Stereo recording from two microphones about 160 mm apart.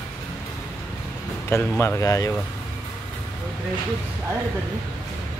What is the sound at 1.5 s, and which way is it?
Speech, 15° left (ahead or behind).